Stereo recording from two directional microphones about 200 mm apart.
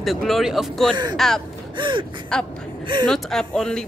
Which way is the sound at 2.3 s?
5° left (ahead or behind).